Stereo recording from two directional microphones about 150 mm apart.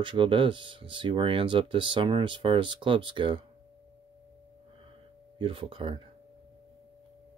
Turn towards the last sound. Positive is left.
turn(degrees=-35)  # may be behind; listen again after turning